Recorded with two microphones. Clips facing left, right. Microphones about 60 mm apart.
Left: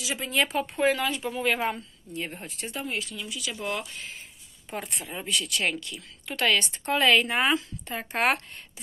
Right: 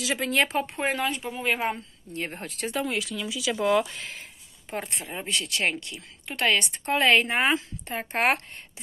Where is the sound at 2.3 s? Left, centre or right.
Right.